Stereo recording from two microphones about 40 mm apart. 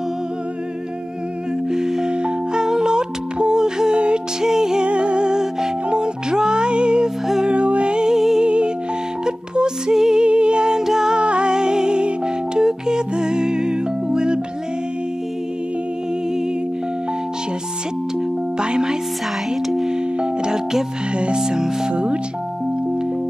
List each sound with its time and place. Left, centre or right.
1.7 s music: centre
4.8 s music: right
8.1 s music: centre
8.5 s music: right
10.2 s humming: right
10.8 s music: centre
11.1 s music: right
18.1 s music: centre
19.5 s music: centre
21.9 s music: right